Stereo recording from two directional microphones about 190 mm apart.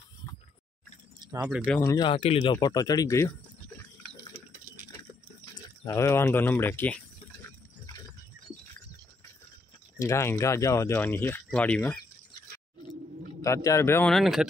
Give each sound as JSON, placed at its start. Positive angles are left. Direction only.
{"t": 1.4, "sound": "speech", "side_deg": -5}
{"t": 1.7, "sound": "speech", "side_deg": 20}
{"t": 2.6, "sound": "speech", "side_deg": 20}
{"t": 4.9, "sound": "a sound", "side_deg": 15}
{"t": 9.9, "sound": "speech", "side_deg": 15}
{"t": 13.4, "sound": "speech", "side_deg": 15}
{"t": 14.1, "sound": "speech", "side_deg": 0}